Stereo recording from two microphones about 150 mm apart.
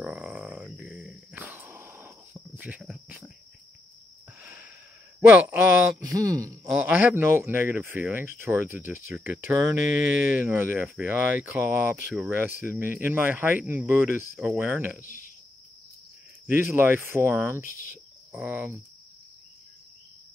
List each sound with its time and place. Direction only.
0.0 s a sound: 5° right (ahead or behind)
4.4 s wheeze: 10° right (ahead or behind)
5.3 s speech: 10° right (ahead or behind)
5.9 s speech: 25° right (ahead or behind)
6.7 s speech: 10° right (ahead or behind)
15.0 s speech: 65° left (ahead or behind)
16.4 s speech: 15° right (ahead or behind)